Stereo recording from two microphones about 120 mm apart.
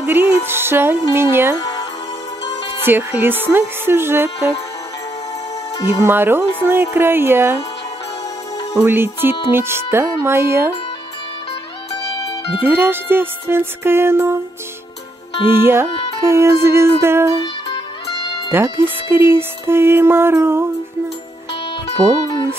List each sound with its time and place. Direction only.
0.0 s music: 20° right (ahead or behind)
1.6 s music: 30° left (ahead or behind)
2.8 s music: 20° right (ahead or behind)
5.9 s speech: 20° right (ahead or behind)
6.6 s music: 20° right (ahead or behind)
8.7 s music: 20° right (ahead or behind)
12.3 s music: 30° left (ahead or behind)
12.6 s music: 15° right (ahead or behind)
15.4 s music: 20° right (ahead or behind)
18.5 s music: 20° right (ahead or behind)